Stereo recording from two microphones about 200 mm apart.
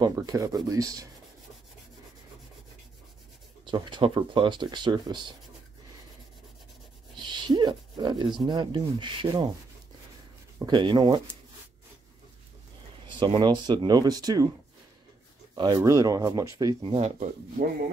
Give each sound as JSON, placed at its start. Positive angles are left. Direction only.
{"t": 0.0, "sound": "speech", "side_deg": -20}
{"t": 3.6, "sound": "speech", "side_deg": -25}
{"t": 7.2, "sound": "speech", "side_deg": -25}
{"t": 10.6, "sound": "speech", "side_deg": -25}
{"t": 13.2, "sound": "speech", "side_deg": -25}
{"t": 15.5, "sound": "speech", "side_deg": -20}